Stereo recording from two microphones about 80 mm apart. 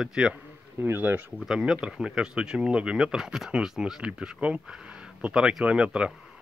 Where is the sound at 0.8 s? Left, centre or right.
Right.